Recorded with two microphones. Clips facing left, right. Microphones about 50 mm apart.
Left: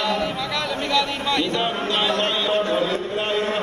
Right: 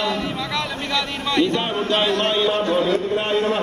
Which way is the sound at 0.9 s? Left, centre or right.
Right.